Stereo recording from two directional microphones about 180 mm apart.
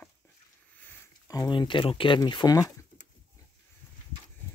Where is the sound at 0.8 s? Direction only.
20° left (ahead or behind).